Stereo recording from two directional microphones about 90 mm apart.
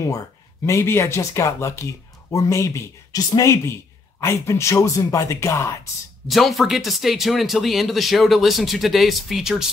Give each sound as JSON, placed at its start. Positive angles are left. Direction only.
{"t": 0.7, "sound": "speech", "side_deg": 30}
{"t": 6.2, "sound": "speech", "side_deg": 0}